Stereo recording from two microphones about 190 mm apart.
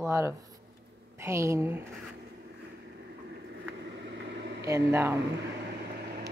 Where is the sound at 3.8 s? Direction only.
65° right (ahead or behind).